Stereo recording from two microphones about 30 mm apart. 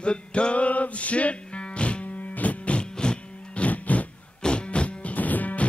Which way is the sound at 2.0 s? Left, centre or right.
Left.